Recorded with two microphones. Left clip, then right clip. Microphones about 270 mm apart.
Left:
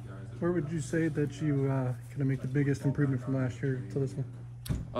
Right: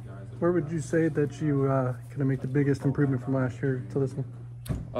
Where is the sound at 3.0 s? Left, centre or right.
Centre.